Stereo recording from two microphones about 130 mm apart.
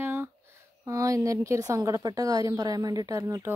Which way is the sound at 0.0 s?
20° right (ahead or behind).